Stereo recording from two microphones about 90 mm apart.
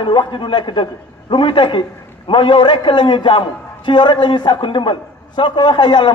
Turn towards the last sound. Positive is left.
turn(degrees=55)  # may be behind; listen again after turning